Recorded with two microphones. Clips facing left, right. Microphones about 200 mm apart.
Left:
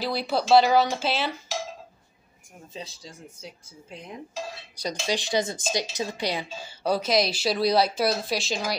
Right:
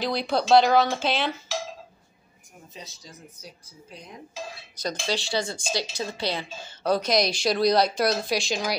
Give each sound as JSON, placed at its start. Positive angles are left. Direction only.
{"t": 0.0, "sound": "a woman's voice", "side_deg": 5}
{"t": 2.7, "sound": "speech", "side_deg": 30}
{"t": 4.7, "sound": "a woman's voice", "side_deg": 15}